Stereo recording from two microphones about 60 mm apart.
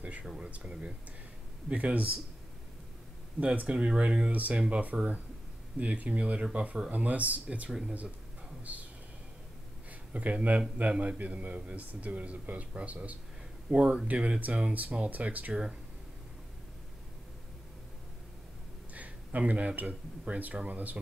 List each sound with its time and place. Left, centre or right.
0.2 s a man's voice: centre; by 2.0 s right
3.3 s a man's voice: right
4.3 s a man's voice: right
10.1 s a man's voice: right
18.9 s a man's voice: right